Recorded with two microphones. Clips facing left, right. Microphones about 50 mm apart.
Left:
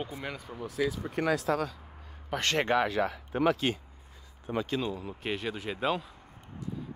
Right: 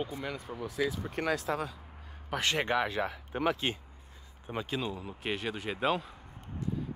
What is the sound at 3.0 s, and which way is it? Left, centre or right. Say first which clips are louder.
Speech: left 4 dB; left.